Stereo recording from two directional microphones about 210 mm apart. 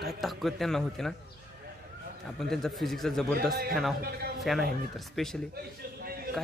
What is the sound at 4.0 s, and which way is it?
Speech, 45° right (ahead or behind).